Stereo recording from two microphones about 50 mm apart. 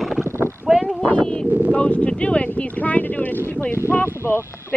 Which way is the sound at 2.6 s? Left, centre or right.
Left.